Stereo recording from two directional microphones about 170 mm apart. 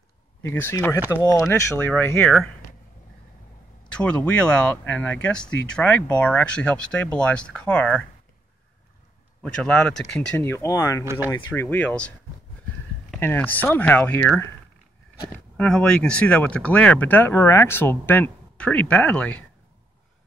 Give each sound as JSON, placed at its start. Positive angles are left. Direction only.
{"t": 0.4, "sound": "speech", "side_deg": 15}
{"t": 4.0, "sound": "speech", "side_deg": 5}
{"t": 9.4, "sound": "speech", "side_deg": 5}
{"t": 13.2, "sound": "speech", "side_deg": 10}
{"t": 15.5, "sound": "speech", "side_deg": 5}